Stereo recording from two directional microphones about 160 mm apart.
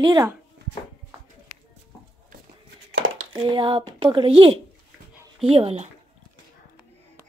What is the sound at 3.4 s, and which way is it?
Speech, 30° right (ahead or behind).